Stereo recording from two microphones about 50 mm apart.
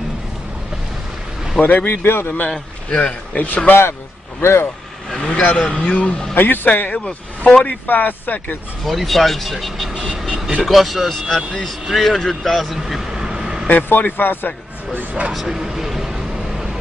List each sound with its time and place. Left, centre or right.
1.6 s speech: left
2.0 s a man's voice: left
2.5 s speech: left
4.4 s speech: left
5.2 s speech: left
5.7 s a man's voice: centre
6.3 s speech: left
6.7 s speech: left
8.8 s speech: centre
10.1 s vehicle: centre
10.6 s speech: centre
13.7 s speech: left
15.0 s speech: right
15.3 s a sound: centre